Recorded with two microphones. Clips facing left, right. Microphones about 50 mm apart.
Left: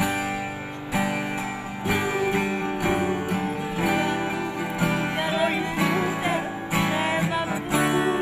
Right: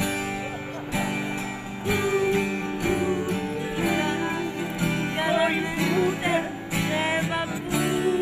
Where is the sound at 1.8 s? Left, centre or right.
Left.